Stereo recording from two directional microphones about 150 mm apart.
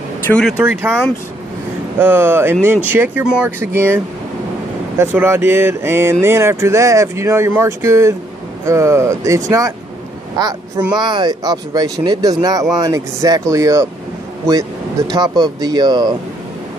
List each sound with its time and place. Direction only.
0.3 s speech: 5° left (ahead or behind)
2.0 s speech: 15° right (ahead or behind)
15.0 s speech: 25° right (ahead or behind)